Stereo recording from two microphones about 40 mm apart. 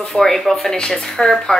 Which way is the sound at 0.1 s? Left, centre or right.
Centre.